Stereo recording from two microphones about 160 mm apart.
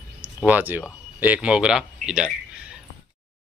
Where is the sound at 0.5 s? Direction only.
10° right (ahead or behind).